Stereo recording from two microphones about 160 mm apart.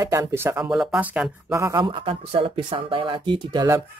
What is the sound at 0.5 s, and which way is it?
Speech, 5° right (ahead or behind).